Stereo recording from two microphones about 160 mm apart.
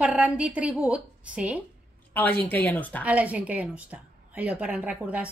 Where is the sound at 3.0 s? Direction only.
10° right (ahead or behind).